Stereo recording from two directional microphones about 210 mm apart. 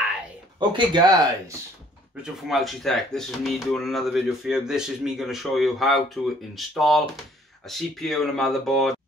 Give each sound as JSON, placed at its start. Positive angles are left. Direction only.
{"t": 0.6, "sound": "speech", "side_deg": -20}
{"t": 2.2, "sound": "speech", "side_deg": 0}